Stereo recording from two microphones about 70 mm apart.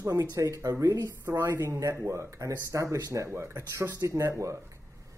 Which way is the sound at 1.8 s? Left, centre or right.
Right.